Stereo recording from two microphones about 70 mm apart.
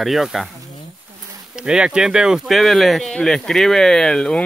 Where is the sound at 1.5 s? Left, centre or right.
Centre.